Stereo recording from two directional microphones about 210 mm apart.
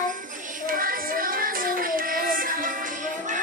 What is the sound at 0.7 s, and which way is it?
Music, 40° right (ahead or behind).